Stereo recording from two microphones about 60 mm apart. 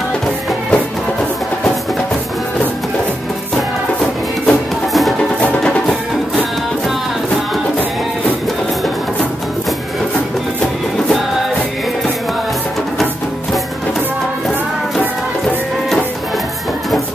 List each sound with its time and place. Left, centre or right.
3.5 s music: centre